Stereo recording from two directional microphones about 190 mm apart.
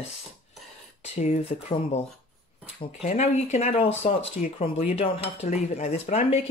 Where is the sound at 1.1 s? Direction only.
40° left (ahead or behind).